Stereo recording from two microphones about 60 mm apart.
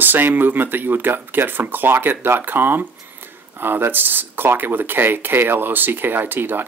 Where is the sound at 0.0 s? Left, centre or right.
Right.